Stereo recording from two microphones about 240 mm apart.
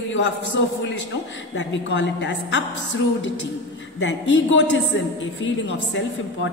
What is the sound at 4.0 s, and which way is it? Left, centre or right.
A woman's voice, left.